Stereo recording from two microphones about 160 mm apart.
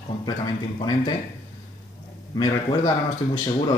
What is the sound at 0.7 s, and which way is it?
Speech, 30° left (ahead or behind).